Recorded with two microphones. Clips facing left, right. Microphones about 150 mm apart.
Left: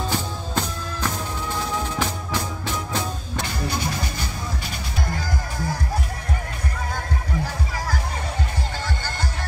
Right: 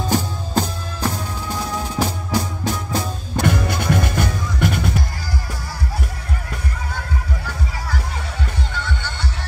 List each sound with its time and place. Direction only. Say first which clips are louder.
0.1 s music: right 5 dB; 35° right (ahead or behind)
3.4 s music: right 8 dB; 60° right (ahead or behind)
5.1 s music: left 1 dB; 50° left (ahead or behind)
8.7 s music: right 1 dB; 40° left (ahead or behind)